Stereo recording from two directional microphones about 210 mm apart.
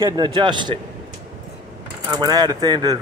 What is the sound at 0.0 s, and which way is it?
Speech, 20° right (ahead or behind).